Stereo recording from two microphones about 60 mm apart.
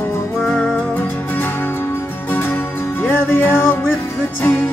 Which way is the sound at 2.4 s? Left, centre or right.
Left.